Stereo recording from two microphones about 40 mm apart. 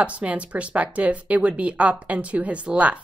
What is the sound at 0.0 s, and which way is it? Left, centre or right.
A woman's voice, right.